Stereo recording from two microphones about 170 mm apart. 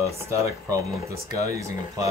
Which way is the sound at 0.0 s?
20° right (ahead or behind).